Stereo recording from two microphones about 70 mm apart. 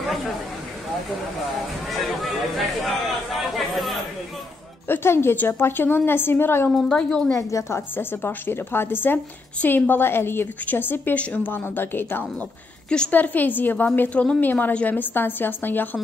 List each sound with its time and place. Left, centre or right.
1.9 s speech: centre
4.8 s a woman's voice: left
6.7 s a woman's voice: centre
7.3 s a woman's voice: left; by 11.5 s centre
11.5 s a woman's voice: left